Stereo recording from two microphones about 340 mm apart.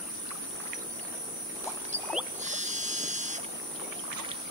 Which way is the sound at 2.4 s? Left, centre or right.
Right.